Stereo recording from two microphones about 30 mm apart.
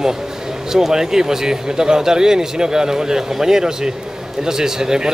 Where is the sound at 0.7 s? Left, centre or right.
Centre.